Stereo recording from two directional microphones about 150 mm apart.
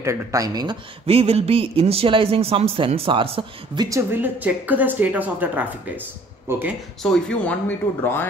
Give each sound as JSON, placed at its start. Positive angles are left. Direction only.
{"t": 0.0, "sound": "speech", "side_deg": -20}
{"t": 1.0, "sound": "a man's voice", "side_deg": -40}
{"t": 4.1, "sound": "a woman's voice", "side_deg": -10}
{"t": 7.0, "sound": "speech", "side_deg": 5}